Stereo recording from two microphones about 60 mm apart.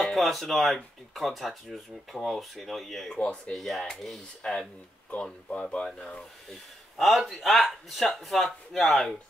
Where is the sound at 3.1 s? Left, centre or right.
Centre.